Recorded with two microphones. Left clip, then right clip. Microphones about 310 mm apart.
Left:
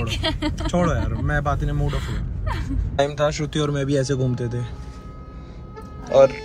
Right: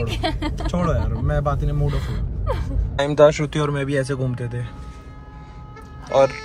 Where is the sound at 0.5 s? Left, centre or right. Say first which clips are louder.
Left 1 dB; centre.